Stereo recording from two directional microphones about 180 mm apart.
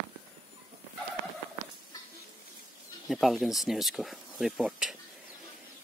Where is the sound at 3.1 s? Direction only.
Centre (ahead or behind).